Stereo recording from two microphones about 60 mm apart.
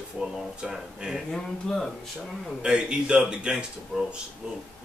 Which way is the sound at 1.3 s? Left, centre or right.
Centre.